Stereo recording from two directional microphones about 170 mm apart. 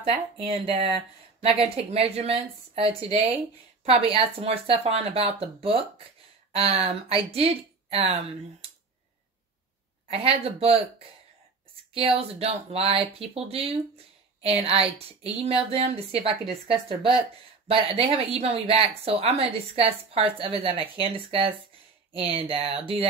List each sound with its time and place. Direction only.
0.0 s a woman's voice: 35° right (ahead or behind)
10.0 s a woman's voice: 35° right (ahead or behind)
17.6 s a woman's voice: 35° right (ahead or behind)